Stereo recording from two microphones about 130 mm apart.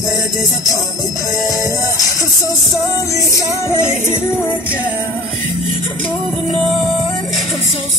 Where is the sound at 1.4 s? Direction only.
25° left (ahead or behind).